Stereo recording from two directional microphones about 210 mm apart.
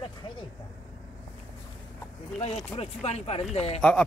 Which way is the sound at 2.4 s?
30° left (ahead or behind).